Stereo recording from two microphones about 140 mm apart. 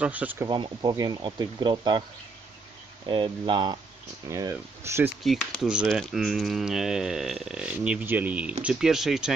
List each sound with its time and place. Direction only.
0.0 s speech: 10° right (ahead or behind)
0.5 s speech: 30° right (ahead or behind)
3.1 s speech: 35° right (ahead or behind)
4.3 s speech: 20° right (ahead or behind)
5.2 s speech: centre (ahead or behind)